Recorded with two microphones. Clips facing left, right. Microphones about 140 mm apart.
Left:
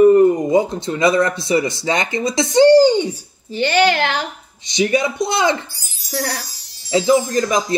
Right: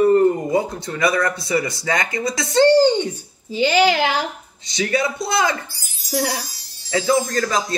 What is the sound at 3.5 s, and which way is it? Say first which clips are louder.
Speech: left 1 dB; 10° right (ahead or behind).